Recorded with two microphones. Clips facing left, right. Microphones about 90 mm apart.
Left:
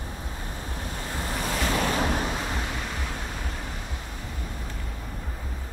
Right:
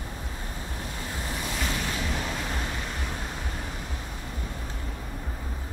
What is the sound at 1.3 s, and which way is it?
Waves, 55° left (ahead or behind).